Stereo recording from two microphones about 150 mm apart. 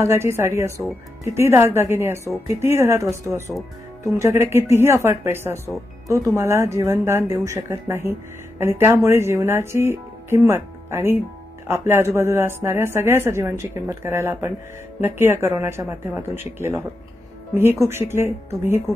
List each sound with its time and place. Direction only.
0.0 s a woman's voice: 20° right (ahead or behind)